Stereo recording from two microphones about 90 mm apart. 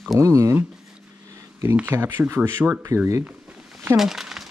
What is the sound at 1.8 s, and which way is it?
Speech, 20° right (ahead or behind).